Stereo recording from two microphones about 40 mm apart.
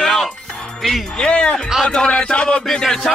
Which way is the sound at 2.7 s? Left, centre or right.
Centre.